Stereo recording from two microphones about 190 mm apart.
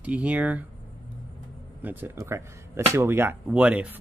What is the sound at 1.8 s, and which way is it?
Speech, 10° right (ahead or behind).